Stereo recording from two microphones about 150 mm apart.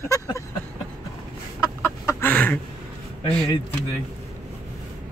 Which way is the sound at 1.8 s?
15° left (ahead or behind).